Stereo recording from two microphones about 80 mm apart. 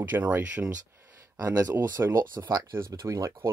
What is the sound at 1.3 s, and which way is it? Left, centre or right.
Speech, right.